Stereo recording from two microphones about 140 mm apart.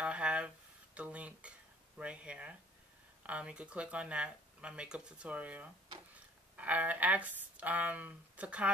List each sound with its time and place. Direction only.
0.0 s speech: 10° right (ahead or behind)